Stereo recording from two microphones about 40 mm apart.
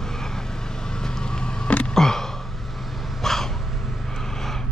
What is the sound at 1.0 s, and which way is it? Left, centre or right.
Vehicle, centre.